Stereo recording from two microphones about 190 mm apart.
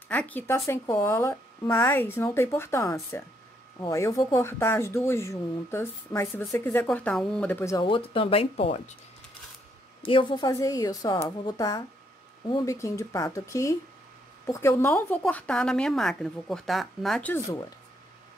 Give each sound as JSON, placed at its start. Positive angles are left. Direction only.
{"t": 0.1, "sound": "speech", "side_deg": 10}
{"t": 7.8, "sound": "a woman's voice", "side_deg": 25}
{"t": 10.0, "sound": "a woman's voice", "side_deg": 25}